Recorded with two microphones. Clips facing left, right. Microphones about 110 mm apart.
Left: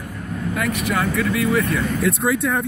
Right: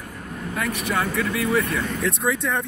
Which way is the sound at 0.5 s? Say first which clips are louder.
Left 2 dB; 30° right (ahead or behind).